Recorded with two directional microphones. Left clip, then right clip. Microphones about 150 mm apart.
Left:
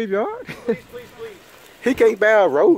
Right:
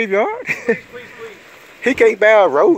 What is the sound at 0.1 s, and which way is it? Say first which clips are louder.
Speech: right 6 dB; 10° left (ahead or behind).